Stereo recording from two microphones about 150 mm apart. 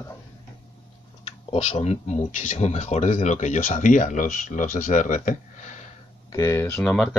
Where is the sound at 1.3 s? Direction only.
40° left (ahead or behind).